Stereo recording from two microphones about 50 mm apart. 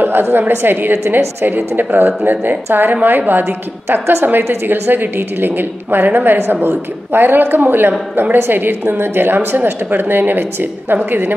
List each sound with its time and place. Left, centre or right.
0.0 s a woman's voice: right